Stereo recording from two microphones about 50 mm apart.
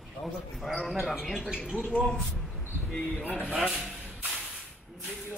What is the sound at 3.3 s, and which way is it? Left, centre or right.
Speech, left.